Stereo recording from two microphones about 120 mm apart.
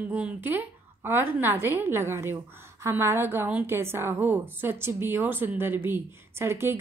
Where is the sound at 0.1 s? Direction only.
15° right (ahead or behind).